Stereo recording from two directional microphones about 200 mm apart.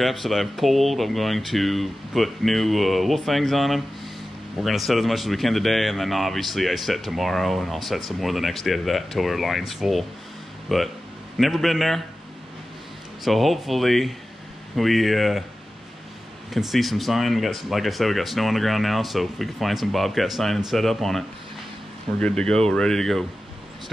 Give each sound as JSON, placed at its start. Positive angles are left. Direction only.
{"t": 0.0, "sound": "speech", "side_deg": 0}
{"t": 13.2, "sound": "speech", "side_deg": 0}
{"t": 16.5, "sound": "speech", "side_deg": 0}
{"t": 22.2, "sound": "speech", "side_deg": 5}